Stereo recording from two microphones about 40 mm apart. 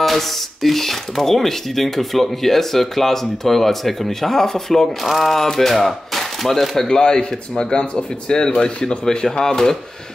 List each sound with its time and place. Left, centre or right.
0.0 s speech: centre
6.9 s speech: centre